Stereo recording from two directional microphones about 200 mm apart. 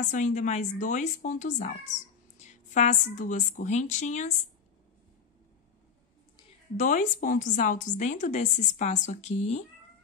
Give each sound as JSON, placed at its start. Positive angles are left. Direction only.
{"t": 0.1, "sound": "a woman's voice", "side_deg": 35}
{"t": 6.8, "sound": "a woman's voice", "side_deg": 40}